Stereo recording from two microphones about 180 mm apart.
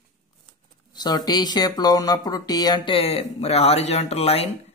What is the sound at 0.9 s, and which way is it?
Speech, 25° left (ahead or behind).